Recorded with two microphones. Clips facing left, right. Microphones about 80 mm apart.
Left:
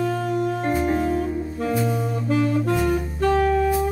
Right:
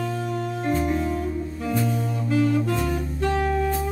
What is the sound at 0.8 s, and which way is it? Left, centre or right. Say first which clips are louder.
Music: left 3 dB; left.